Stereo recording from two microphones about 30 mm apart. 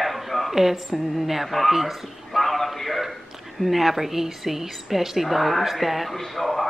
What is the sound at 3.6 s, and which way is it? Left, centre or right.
A woman's voice, centre.